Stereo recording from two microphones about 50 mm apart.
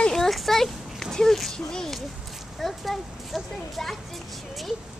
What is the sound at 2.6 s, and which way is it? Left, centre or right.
Speech, centre.